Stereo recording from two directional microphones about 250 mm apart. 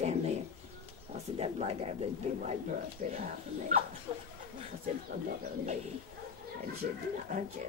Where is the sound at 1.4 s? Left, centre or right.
Right.